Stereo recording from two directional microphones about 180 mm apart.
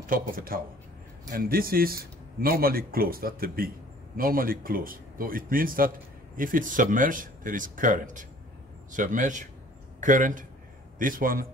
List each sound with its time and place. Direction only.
0.5 s a man's voice: 55° right (ahead or behind)